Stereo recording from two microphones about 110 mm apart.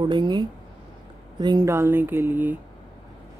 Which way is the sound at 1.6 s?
25° right (ahead or behind).